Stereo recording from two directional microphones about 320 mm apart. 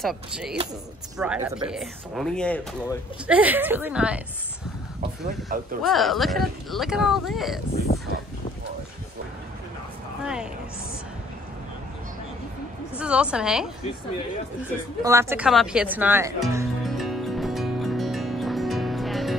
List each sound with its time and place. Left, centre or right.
0.0 s speech: centre
5.2 s speech: right
5.8 s speech: centre
10.2 s speech: centre
12.9 s speech: centre
15.0 s speech: centre
16.5 s music: centre